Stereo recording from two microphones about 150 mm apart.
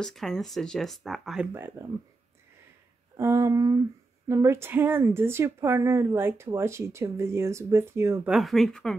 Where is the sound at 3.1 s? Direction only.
20° right (ahead or behind).